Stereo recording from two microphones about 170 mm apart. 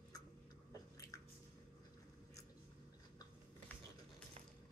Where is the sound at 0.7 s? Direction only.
20° left (ahead or behind).